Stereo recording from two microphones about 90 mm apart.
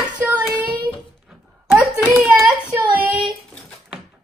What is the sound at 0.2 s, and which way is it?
Child singing, 15° right (ahead or behind).